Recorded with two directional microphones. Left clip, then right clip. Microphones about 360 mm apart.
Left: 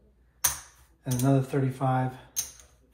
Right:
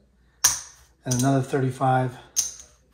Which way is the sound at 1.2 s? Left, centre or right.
Right.